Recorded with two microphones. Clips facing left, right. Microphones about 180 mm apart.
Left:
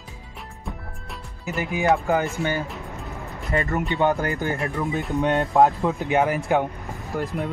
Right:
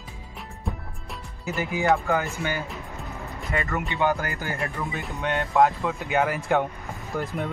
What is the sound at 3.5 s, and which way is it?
Speech, 35° left (ahead or behind).